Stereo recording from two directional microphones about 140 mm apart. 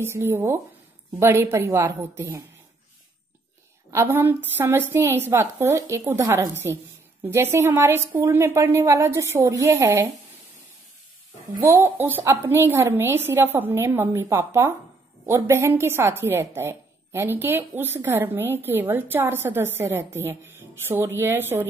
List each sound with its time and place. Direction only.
0.1 s a woman's voice: 15° right (ahead or behind)
3.9 s a woman's voice: 15° right (ahead or behind)
11.6 s a woman's voice: 20° right (ahead or behind)